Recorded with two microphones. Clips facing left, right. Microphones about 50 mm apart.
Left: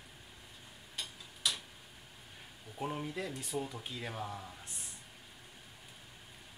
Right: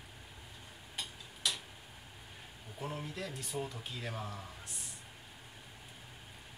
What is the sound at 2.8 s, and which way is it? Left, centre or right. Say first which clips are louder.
Speech: left 3 dB; centre.